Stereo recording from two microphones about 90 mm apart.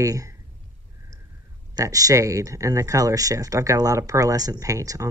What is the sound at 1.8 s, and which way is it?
Speech, 40° right (ahead or behind).